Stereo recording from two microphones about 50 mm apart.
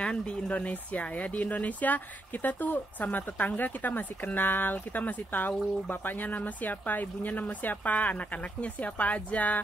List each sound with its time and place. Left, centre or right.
0.0 s speech: centre